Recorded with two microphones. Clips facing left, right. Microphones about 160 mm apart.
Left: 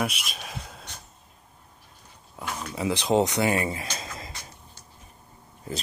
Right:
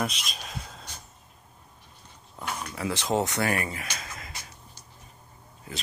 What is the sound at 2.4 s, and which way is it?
Speech, 5° left (ahead or behind).